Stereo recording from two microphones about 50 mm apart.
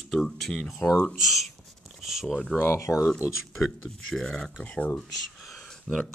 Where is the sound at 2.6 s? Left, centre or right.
Left.